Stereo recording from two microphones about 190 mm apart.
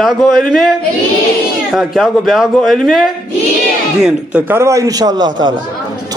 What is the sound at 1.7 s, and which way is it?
A man's voice, centre (ahead or behind).